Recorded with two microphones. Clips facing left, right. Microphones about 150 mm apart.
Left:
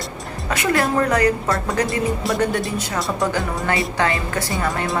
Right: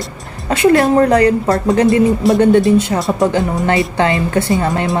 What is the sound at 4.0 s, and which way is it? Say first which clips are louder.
Speech: right 7 dB; 25° right (ahead or behind).